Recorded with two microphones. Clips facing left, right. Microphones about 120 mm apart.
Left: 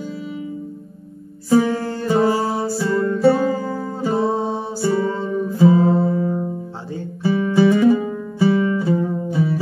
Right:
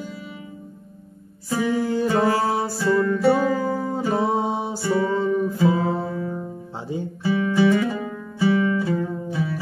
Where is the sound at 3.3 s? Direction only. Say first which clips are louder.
Left 4 dB; 15° right (ahead or behind).